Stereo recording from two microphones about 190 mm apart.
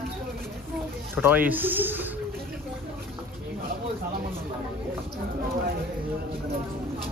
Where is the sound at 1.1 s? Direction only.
10° right (ahead or behind).